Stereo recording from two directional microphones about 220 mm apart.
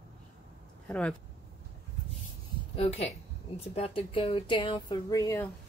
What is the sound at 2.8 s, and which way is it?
Speech, 30° left (ahead or behind).